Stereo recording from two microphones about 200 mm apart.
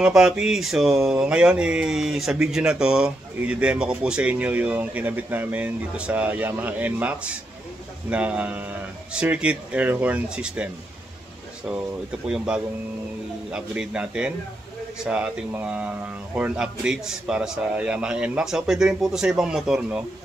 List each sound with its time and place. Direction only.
0.0 s speech: 5° right (ahead or behind)
12.3 s speech: 5° right (ahead or behind)